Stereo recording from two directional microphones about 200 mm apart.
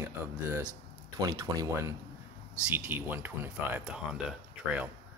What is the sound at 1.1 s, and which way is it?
Speech, 15° right (ahead or behind).